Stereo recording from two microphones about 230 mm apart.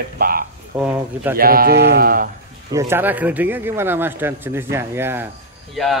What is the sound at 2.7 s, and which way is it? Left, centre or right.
A man's voice, centre.